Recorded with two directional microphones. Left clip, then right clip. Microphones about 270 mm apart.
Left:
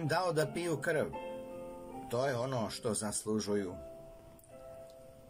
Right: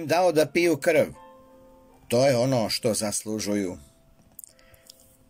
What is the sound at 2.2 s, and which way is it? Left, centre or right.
Speech, right.